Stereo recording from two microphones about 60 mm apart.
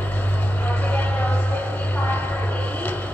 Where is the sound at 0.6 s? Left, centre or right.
Left.